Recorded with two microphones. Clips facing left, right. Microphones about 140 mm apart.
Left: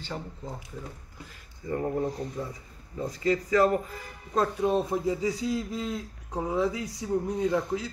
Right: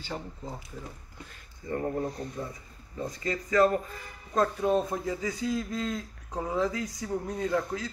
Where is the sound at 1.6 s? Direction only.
20° left (ahead or behind).